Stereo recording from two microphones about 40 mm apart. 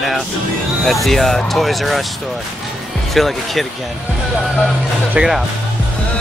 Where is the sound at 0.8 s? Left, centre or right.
Centre.